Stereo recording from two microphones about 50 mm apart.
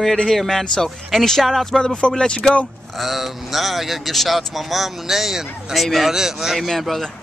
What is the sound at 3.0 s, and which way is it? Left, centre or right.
Speech, centre.